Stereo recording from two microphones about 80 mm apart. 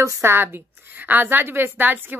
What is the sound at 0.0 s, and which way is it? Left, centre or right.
Speech, right.